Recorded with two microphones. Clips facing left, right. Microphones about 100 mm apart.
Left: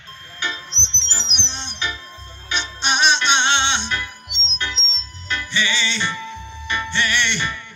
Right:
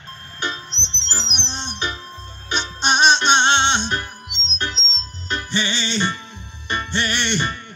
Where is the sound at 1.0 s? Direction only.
45° right (ahead or behind).